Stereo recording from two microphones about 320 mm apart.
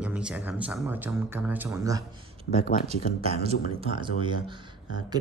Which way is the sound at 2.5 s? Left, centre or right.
Left.